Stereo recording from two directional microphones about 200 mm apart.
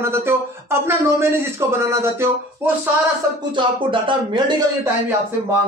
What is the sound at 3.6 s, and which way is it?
Speech, 25° right (ahead or behind).